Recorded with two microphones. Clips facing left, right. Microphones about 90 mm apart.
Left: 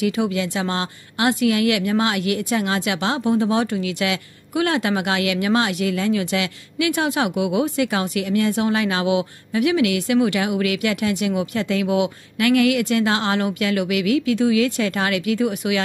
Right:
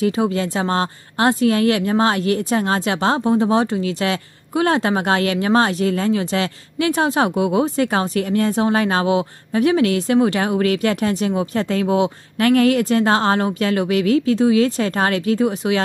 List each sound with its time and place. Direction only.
0.0 s a woman's voice: 35° right (ahead or behind)